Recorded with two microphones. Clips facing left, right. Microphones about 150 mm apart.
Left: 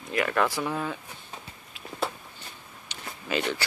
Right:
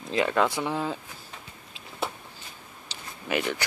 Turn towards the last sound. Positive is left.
turn(degrees=-15)  # may be behind; listen again after turning